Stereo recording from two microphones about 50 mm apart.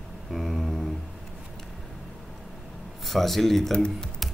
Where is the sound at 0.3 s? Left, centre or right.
Centre.